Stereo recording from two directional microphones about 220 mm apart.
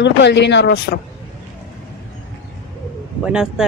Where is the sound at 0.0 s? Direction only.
50° left (ahead or behind).